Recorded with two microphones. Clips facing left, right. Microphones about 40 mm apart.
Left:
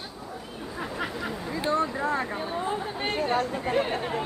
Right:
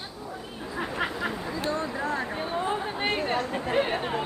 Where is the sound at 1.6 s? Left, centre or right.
Left.